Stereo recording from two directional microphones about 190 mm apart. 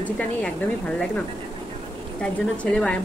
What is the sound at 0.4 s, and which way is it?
Speech, 5° left (ahead or behind).